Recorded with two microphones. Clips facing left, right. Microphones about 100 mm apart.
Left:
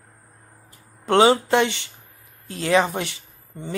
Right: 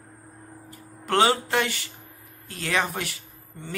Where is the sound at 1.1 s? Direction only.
25° left (ahead or behind).